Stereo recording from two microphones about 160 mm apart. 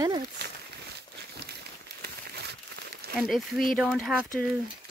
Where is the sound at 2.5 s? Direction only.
90° right.